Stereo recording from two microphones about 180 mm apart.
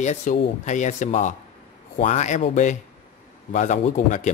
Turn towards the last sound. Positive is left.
turn(degrees=40)  # may be behind; listen again after turning